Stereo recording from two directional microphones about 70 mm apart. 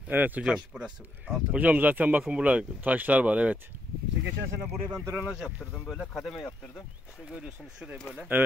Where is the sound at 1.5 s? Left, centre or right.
Right.